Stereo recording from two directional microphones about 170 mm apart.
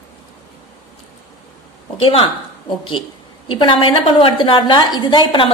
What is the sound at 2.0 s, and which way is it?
Speech, 30° left (ahead or behind).